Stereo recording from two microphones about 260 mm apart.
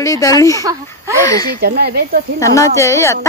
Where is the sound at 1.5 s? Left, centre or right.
Right.